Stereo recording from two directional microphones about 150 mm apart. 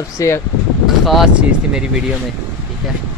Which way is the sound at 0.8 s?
Centre (ahead or behind).